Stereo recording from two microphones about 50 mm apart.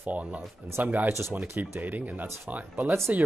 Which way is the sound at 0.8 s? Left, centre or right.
Right.